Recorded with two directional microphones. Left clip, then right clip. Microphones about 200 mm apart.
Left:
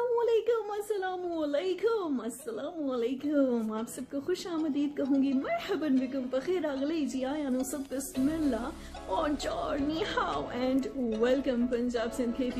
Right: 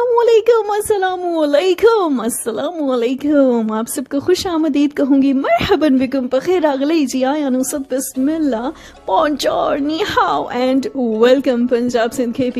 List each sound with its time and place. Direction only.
0.2 s speech: 50° right (ahead or behind)